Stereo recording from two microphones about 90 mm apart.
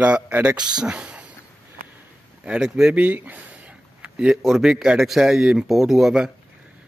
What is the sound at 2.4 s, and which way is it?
Speech, 10° right (ahead or behind).